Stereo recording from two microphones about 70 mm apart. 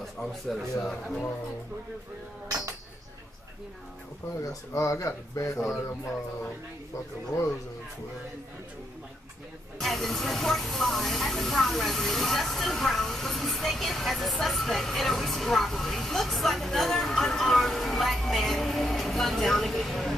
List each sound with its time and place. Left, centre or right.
0.0 s speech: centre
4.4 s speech: left
9.8 s speech: centre